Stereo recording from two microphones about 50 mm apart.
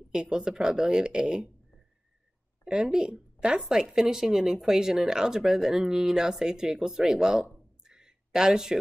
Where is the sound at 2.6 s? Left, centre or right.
Centre.